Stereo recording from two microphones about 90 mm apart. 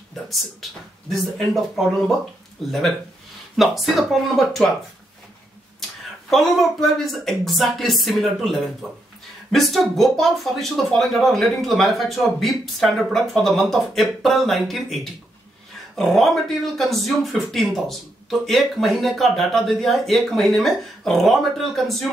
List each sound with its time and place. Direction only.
1.5 s speech: centre (ahead or behind)
3.5 s speech: centre (ahead or behind)
6.3 s speech: centre (ahead or behind)
16.0 s speech: centre (ahead or behind)